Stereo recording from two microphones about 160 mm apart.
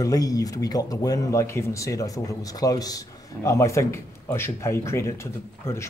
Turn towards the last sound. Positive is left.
turn(degrees=15)  # may be behind; listen again after turning